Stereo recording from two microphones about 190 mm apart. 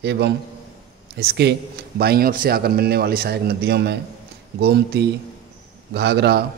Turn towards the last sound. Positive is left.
turn(degrees=-60)  # may be behind; listen again after turning